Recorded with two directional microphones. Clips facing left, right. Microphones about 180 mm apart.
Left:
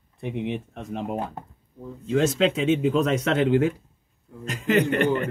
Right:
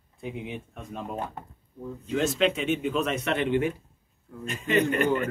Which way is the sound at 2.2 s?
90° left.